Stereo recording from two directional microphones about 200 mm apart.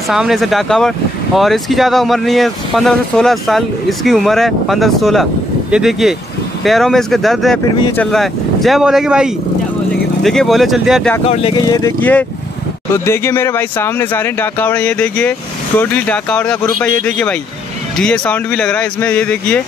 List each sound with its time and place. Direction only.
0.1 s speech: centre (ahead or behind)
11.2 s speech: 30° left (ahead or behind)
11.8 s speech: 10° left (ahead or behind)